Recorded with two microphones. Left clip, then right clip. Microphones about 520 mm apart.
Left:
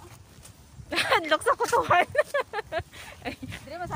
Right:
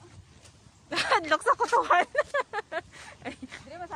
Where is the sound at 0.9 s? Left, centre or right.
Right.